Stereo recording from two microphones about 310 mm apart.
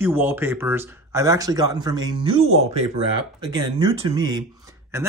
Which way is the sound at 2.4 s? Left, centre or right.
Right.